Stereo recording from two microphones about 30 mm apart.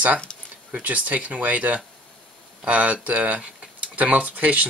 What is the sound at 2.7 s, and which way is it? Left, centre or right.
Speech, right.